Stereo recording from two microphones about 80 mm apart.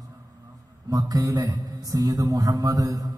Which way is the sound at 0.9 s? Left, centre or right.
Right.